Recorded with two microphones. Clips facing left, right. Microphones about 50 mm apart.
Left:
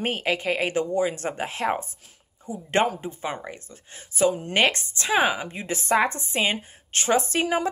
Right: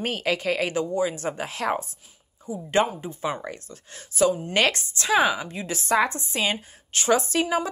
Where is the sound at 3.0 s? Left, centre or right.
Left.